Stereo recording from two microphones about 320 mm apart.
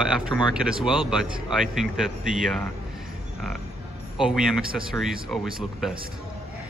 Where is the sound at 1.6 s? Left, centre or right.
Centre.